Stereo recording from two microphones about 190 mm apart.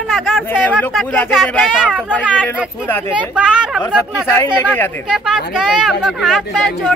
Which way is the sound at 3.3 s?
5° right (ahead or behind).